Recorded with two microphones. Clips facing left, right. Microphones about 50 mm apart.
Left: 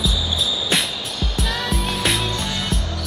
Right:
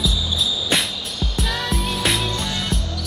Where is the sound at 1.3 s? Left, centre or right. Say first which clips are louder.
Even; centre.